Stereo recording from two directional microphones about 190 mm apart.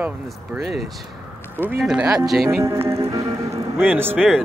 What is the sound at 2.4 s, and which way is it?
Speech, 15° right (ahead or behind).